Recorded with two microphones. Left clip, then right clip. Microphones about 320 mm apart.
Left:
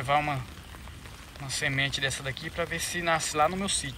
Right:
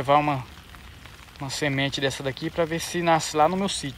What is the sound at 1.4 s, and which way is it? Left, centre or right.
Speech, centre.